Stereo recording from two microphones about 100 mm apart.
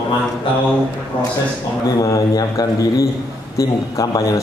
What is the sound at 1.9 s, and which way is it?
A man's voice, 35° left (ahead or behind).